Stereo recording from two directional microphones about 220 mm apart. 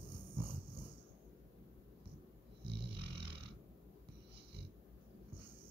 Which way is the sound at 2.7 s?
50° right (ahead or behind).